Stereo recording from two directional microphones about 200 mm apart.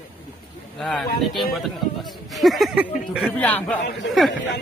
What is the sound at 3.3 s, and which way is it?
Speech, 10° left (ahead or behind).